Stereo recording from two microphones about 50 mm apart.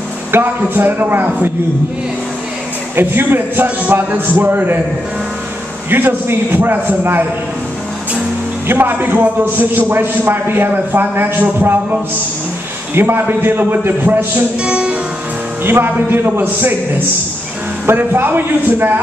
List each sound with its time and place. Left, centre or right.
0.3 s a man's voice: right
3.0 s a man's voice: right
5.9 s a man's voice: right
8.6 s a man's voice: right
12.9 s a man's voice: right
14.6 s music: right
15.6 s a man's voice: right
17.8 s a man's voice: right